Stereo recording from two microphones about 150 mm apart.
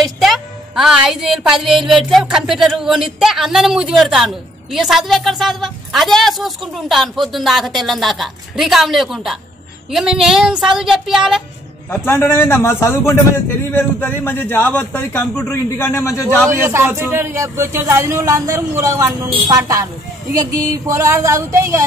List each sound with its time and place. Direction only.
0.0 s music: centre (ahead or behind)
11.9 s a man's voice: 15° left (ahead or behind)
16.4 s a man's voice: 15° right (ahead or behind)